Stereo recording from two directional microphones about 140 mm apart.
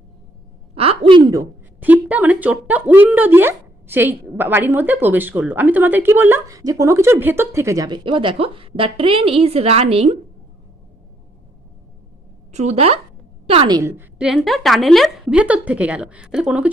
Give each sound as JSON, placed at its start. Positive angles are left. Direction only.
{"t": 0.7, "sound": "a woman's voice", "side_deg": -40}
{"t": 1.8, "sound": "speech", "side_deg": -10}
{"t": 12.5, "sound": "a woman's voice", "side_deg": -50}
{"t": 13.7, "sound": "a woman's voice", "side_deg": -25}
{"t": 13.9, "sound": "speech", "side_deg": -5}